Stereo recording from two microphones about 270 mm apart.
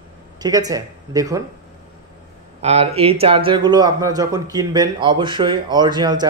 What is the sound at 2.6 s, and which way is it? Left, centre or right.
Speech, right.